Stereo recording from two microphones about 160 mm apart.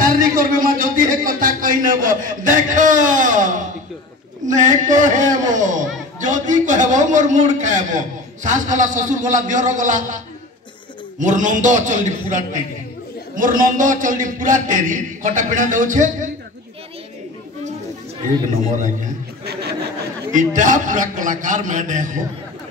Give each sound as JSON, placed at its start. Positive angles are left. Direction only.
{"t": 0.0, "sound": "music", "side_deg": -60}
{"t": 4.5, "sound": "a man's voice", "side_deg": -50}
{"t": 20.3, "sound": "a man's voice", "side_deg": -55}